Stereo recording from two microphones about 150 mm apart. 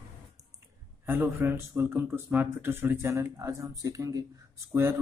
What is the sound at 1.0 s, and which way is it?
A man's voice, 15° right (ahead or behind).